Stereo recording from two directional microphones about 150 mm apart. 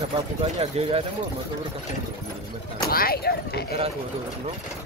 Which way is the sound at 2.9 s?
85° left.